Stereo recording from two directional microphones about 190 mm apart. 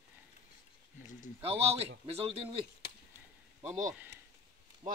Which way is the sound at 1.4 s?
30° right (ahead or behind).